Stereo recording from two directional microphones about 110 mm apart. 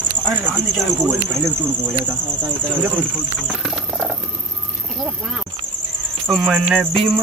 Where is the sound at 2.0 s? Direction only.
15° right (ahead or behind).